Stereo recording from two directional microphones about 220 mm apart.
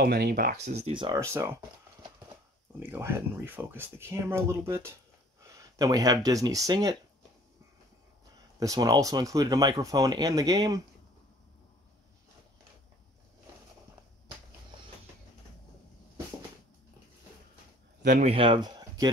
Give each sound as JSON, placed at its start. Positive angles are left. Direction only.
{"t": 0.0, "sound": "speech", "side_deg": -45}
{"t": 2.8, "sound": "speech", "side_deg": -10}
{"t": 8.5, "sound": "speech", "side_deg": -15}
{"t": 18.0, "sound": "speech", "side_deg": -35}